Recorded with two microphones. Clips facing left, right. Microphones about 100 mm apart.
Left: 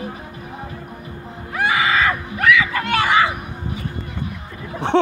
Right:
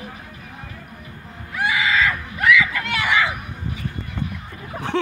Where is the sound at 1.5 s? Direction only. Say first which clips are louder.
Left 3 dB; 45° left (ahead or behind).